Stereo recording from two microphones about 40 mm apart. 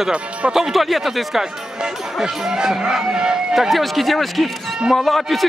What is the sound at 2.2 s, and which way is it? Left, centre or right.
Speech, centre.